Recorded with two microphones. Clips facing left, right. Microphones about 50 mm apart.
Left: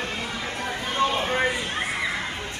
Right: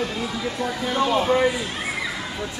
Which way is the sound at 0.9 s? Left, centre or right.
Left.